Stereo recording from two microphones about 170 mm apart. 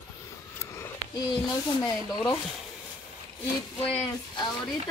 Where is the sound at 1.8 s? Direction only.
20° left (ahead or behind).